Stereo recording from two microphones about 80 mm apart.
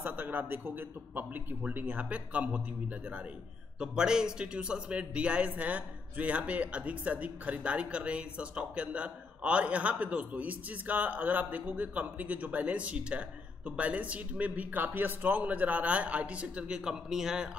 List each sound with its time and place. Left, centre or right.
0.0 s a man's voice: right; by 17.5 s centre